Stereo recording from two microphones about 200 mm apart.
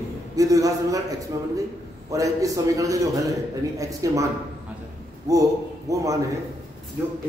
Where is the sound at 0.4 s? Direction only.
15° right (ahead or behind).